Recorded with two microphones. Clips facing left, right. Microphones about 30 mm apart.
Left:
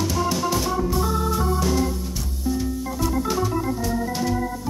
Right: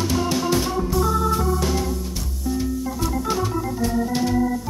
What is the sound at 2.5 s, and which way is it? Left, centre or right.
Organ, centre.